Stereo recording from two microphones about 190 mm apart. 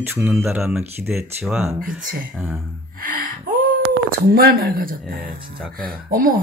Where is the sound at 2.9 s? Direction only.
45° right (ahead or behind).